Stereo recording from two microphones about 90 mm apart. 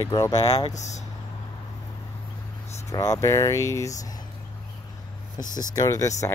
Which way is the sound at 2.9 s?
35° left (ahead or behind).